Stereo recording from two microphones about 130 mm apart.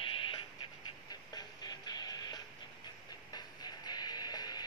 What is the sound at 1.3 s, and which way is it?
Music, 30° left (ahead or behind).